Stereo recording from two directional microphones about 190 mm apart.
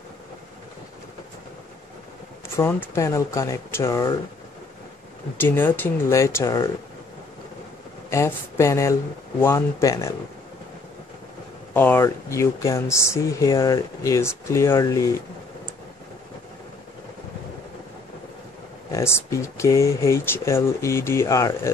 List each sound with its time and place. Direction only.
2.4 s speech: 15° left (ahead or behind)
5.4 s speech: 10° left (ahead or behind)
8.1 s speech: 15° left (ahead or behind)
11.7 s speech: 10° left (ahead or behind)
18.9 s speech: 15° left (ahead or behind)